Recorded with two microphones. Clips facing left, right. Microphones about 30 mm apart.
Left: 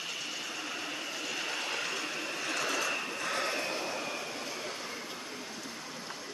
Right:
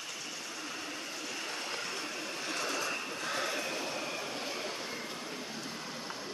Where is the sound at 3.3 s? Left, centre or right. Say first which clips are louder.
Left 1 dB; left.